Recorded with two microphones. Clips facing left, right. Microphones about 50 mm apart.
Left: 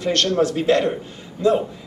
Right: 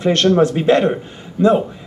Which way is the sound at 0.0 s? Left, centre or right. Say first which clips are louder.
Right 6 dB; right.